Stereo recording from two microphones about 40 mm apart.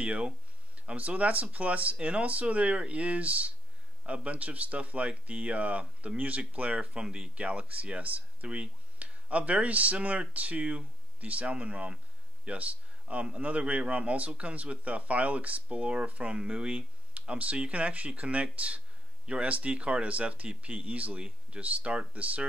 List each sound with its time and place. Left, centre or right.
0.0 s speech: right